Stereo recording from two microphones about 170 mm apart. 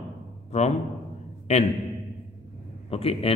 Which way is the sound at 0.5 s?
40° left (ahead or behind).